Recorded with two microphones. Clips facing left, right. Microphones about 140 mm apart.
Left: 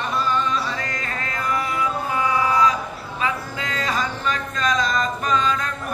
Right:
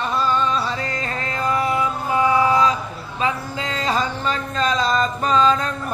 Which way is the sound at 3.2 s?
25° right (ahead or behind).